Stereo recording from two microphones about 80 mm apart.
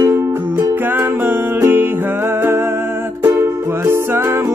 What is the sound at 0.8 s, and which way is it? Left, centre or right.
Music, right.